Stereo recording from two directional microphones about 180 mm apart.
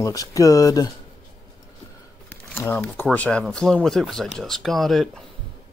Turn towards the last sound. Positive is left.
turn(degrees=0)  # may be behind; listen again after turning